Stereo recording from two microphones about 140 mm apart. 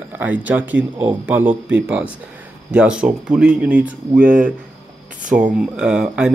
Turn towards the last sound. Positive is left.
turn(degrees=-5)  # may be behind; listen again after turning